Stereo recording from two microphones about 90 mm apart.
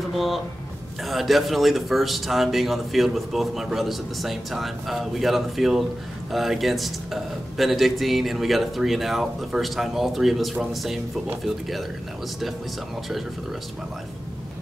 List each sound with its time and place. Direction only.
0.1 s a man's voice: centre (ahead or behind)